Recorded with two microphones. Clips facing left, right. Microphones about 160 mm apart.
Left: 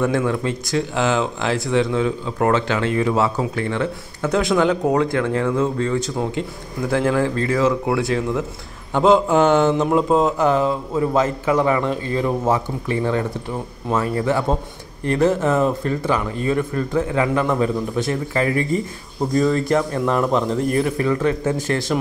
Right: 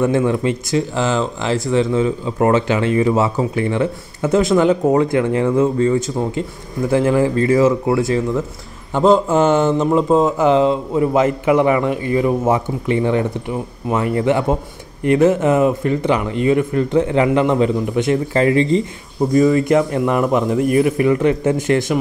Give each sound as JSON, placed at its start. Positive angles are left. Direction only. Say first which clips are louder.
{"t": 0.0, "sound": "a man's voice", "louder": "right 4 dB", "side_deg": -5}
{"t": 10.5, "sound": "a man's voice", "louder": "right 5 dB", "side_deg": -20}
{"t": 19.3, "sound": "a man's voice", "louder": "right 5 dB", "side_deg": -10}